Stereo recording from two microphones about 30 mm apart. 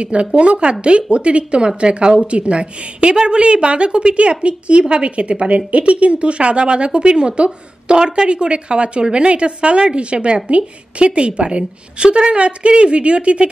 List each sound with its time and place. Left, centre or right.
0.0 s speech: right